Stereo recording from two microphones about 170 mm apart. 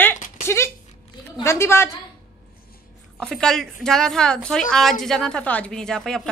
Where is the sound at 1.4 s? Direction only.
15° left (ahead or behind).